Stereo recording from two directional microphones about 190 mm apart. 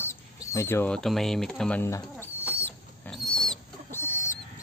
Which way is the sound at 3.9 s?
10° left (ahead or behind).